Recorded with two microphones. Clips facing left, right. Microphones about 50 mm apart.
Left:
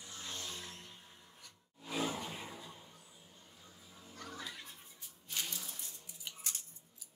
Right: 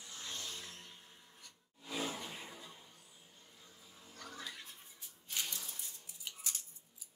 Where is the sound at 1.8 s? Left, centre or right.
Left.